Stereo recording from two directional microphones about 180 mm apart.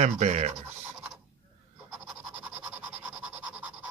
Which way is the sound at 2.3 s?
10° right (ahead or behind).